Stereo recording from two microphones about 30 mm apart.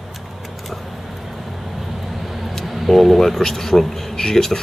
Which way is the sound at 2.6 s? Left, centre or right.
Centre.